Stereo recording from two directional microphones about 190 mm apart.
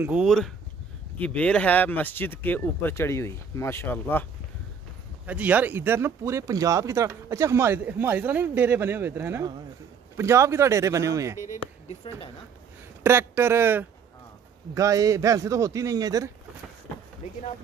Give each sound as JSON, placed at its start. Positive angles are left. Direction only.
{"t": 0.0, "sound": "speech", "side_deg": -5}
{"t": 5.2, "sound": "speech", "side_deg": -5}
{"t": 12.1, "sound": "speech", "side_deg": 25}
{"t": 13.0, "sound": "speech", "side_deg": -15}